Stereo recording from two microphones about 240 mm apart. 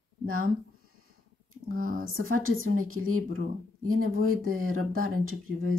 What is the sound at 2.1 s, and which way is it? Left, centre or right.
Speech, right.